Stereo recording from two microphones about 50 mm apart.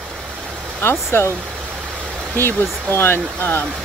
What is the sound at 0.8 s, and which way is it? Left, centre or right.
Speech, left.